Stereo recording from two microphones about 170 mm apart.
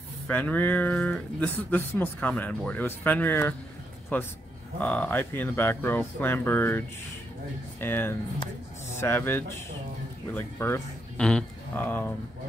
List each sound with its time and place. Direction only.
0.3 s speech: 10° left (ahead or behind)
7.8 s speech: 15° left (ahead or behind)